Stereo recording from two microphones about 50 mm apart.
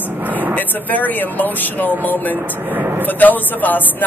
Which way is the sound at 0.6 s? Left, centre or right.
Left.